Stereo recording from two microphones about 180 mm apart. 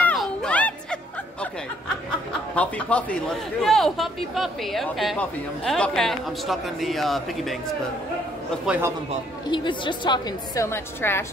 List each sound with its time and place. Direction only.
0.0 s music: 5° left (ahead or behind)
2.5 s a man's voice: 5° left (ahead or behind)
8.6 s a man's voice: 10° right (ahead or behind)
9.5 s a woman's voice: 25° left (ahead or behind)